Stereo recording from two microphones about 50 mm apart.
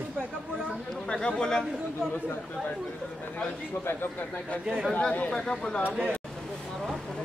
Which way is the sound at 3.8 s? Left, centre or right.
Left.